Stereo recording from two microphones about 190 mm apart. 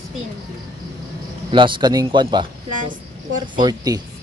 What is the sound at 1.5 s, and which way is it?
Speech, 25° right (ahead or behind).